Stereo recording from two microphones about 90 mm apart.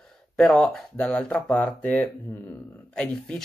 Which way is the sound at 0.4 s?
5° left (ahead or behind).